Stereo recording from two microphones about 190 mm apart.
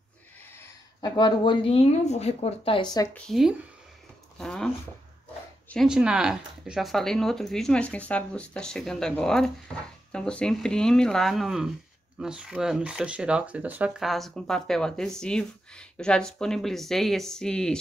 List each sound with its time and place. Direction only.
1.1 s speech: 25° left (ahead or behind)
3.2 s speech: centre (ahead or behind)
5.7 s speech: centre (ahead or behind)